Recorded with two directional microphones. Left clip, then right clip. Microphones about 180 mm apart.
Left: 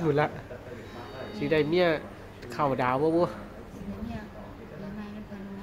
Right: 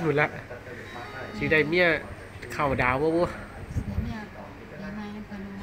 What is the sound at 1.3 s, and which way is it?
Speech, 5° left (ahead or behind).